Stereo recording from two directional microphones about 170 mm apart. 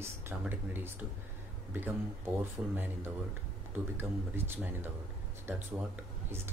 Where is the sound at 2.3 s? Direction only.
10° right (ahead or behind).